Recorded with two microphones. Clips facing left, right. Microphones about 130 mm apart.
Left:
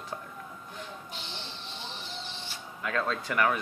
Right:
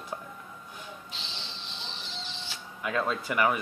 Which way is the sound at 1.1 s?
90° right.